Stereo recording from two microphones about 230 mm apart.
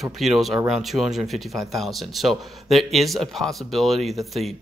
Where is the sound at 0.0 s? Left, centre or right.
Centre.